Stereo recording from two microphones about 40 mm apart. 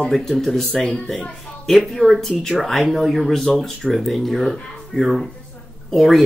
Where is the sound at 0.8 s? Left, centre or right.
Centre.